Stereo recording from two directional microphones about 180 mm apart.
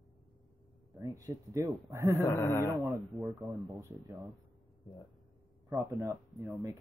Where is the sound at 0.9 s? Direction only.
20° right (ahead or behind).